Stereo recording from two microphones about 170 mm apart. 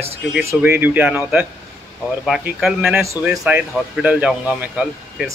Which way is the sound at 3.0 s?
15° right (ahead or behind).